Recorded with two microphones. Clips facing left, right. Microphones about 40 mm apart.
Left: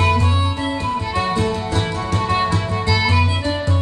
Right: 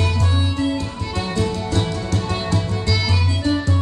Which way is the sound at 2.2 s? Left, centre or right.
Left.